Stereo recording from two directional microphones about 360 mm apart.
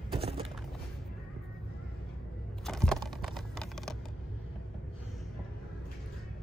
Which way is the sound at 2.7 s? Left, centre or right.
Centre.